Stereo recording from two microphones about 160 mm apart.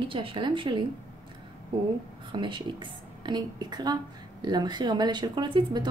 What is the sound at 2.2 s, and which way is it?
A woman's voice, 30° right (ahead or behind).